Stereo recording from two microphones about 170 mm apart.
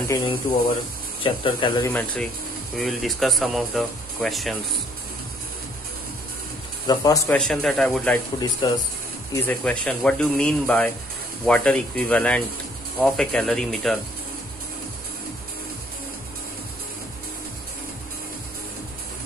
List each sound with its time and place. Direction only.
0.1 s speech: 30° left (ahead or behind)
1.9 s speech: 10° left (ahead or behind)
6.9 s speech: 20° left (ahead or behind)
7.2 s speech: 5° left (ahead or behind)
8.4 s speech: 25° left (ahead or behind)
9.3 s speech: 10° left (ahead or behind)